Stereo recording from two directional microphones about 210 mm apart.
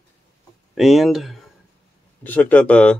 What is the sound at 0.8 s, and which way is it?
Speech, centre (ahead or behind).